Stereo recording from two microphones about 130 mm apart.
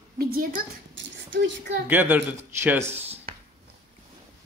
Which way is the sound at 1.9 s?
15° right (ahead or behind).